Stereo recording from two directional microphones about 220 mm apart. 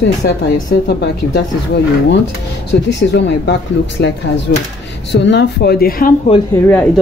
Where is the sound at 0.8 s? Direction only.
45° left (ahead or behind).